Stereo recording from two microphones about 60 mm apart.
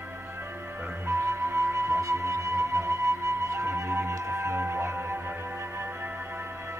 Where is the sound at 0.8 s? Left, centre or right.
Right.